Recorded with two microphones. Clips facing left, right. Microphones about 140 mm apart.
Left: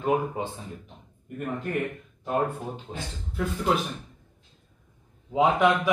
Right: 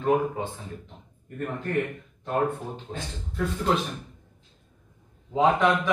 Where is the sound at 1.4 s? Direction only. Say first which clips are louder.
Even; 10° left (ahead or behind).